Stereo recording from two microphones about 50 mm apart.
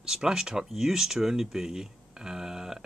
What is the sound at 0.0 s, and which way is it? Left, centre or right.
Speech, centre.